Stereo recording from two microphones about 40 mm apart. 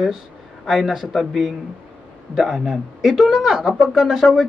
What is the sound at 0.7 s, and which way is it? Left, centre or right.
Speech, centre.